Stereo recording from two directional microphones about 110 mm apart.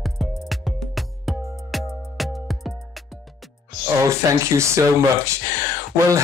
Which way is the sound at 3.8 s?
30° right (ahead or behind).